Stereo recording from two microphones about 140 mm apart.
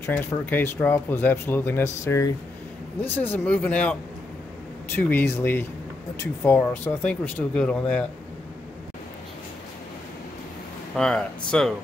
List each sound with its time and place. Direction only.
0.0 s speech: 20° left (ahead or behind)
3.0 s speech: 10° left (ahead or behind)
4.9 s speech: 15° left (ahead or behind)
11.0 s speech: 5° left (ahead or behind)